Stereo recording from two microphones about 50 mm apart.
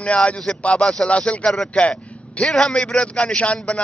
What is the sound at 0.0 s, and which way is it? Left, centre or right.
A man's voice, left.